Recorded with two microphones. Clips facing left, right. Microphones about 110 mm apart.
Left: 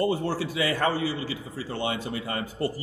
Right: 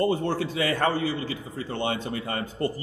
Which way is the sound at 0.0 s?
25° right (ahead or behind).